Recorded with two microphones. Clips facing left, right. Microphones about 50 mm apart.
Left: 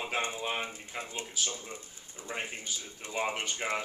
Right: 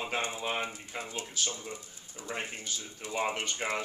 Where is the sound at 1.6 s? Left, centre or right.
Left.